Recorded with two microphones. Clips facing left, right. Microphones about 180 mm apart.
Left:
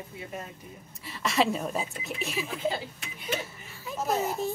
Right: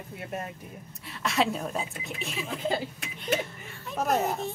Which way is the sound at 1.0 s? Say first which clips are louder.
Left 1 dB; centre (ahead or behind).